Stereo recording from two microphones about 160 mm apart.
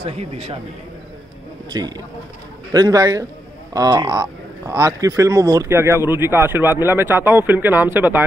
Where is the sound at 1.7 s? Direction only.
25° right (ahead or behind).